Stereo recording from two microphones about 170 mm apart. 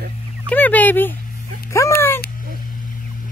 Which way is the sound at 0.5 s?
10° left (ahead or behind).